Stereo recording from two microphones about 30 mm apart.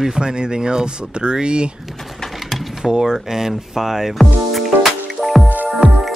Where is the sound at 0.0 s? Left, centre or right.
Right.